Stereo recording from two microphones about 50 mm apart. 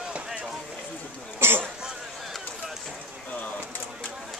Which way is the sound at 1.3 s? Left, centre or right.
Right.